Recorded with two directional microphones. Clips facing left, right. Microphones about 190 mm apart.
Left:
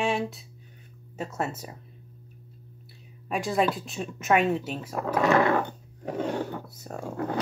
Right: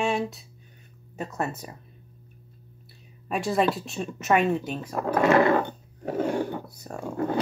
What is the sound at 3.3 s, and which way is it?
Speech, centre (ahead or behind).